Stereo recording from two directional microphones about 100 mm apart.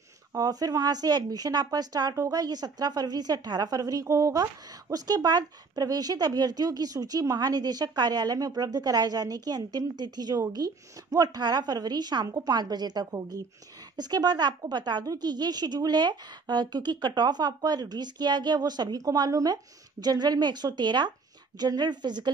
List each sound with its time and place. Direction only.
0.3 s a woman's voice: 40° right (ahead or behind)